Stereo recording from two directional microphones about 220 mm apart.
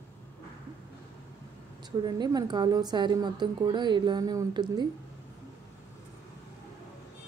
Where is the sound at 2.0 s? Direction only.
15° right (ahead or behind).